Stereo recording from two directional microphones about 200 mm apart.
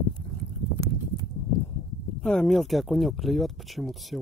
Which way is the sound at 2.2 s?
Centre (ahead or behind).